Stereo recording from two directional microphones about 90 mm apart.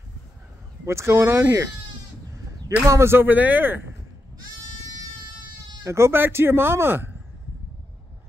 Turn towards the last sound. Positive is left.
turn(degrees=-25)  # may be behind; listen again after turning